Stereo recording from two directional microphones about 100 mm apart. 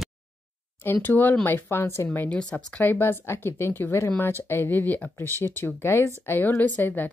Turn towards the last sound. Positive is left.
turn(degrees=20)  # may be behind; listen again after turning